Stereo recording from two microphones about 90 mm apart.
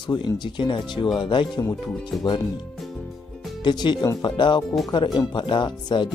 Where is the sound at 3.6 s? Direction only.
55° left (ahead or behind).